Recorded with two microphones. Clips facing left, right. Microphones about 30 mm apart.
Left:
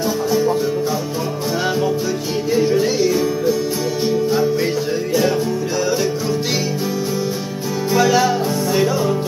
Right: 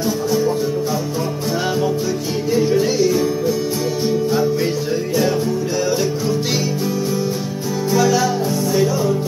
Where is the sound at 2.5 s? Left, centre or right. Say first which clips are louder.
Even; centre.